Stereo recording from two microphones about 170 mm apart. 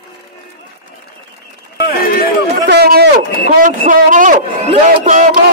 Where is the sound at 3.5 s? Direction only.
50° right (ahead or behind).